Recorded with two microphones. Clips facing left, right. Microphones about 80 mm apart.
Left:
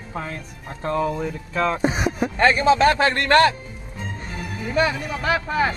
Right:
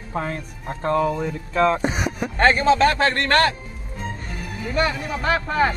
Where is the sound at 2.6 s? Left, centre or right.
Centre.